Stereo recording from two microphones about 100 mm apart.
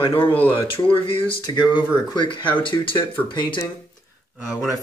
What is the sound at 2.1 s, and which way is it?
Speech, 55° left (ahead or behind).